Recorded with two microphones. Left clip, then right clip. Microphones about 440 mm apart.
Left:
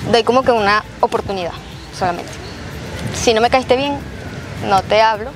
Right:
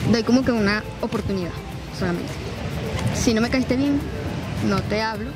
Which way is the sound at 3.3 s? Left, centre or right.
Left.